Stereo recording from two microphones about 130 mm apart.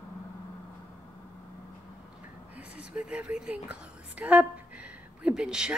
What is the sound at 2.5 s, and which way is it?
A woman's voice, 10° right (ahead or behind).